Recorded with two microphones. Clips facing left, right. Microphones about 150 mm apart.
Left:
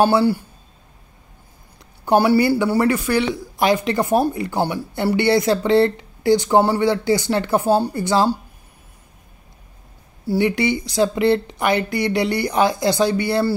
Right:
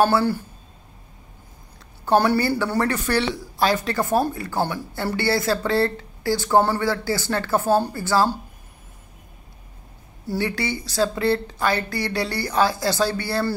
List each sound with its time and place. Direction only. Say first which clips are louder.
0.0 s speech: left 3 dB; 15° left (ahead or behind)
2.0 s speech: left 4 dB; 10° left (ahead or behind)
10.2 s speech: left 7 dB; 15° left (ahead or behind)